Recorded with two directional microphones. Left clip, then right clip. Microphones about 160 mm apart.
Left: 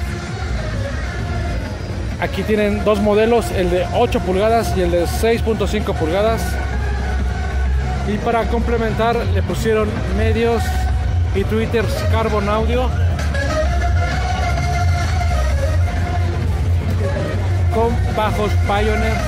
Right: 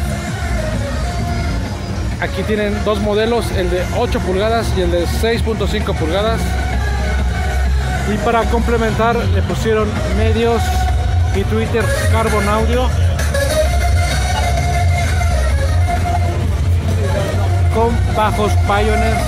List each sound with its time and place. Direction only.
2.2 s speech: 20° left (ahead or behind)
8.3 s speech: centre (ahead or behind)
17.7 s speech: centre (ahead or behind)